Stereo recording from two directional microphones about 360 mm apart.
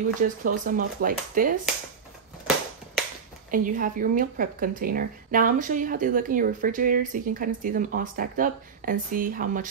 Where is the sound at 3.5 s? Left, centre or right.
Right.